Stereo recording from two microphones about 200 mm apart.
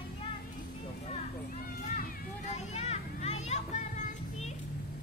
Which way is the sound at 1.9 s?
35° left (ahead or behind).